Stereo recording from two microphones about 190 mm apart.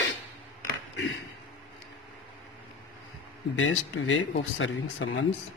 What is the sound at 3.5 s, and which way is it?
Speech, 90° left.